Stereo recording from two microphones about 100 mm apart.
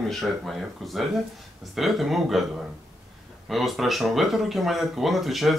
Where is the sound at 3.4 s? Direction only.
Centre (ahead or behind).